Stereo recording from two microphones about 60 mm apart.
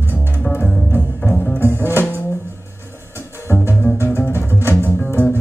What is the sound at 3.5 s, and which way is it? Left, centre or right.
Music, left.